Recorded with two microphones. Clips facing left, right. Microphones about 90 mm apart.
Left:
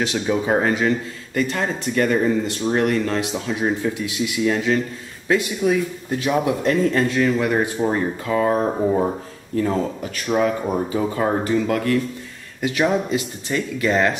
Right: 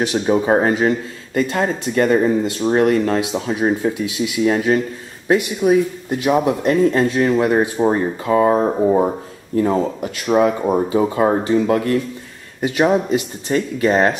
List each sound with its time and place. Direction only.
0.0 s speech: 30° right (ahead or behind)
5.3 s speech: 25° right (ahead or behind)